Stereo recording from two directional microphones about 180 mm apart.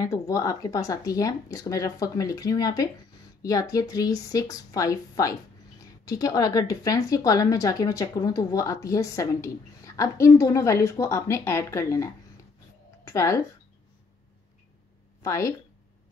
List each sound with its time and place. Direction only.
0.0 s a woman's voice: 20° left (ahead or behind)
15.2 s speech: 15° left (ahead or behind)